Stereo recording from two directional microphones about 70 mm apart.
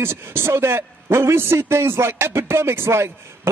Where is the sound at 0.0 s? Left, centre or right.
Right.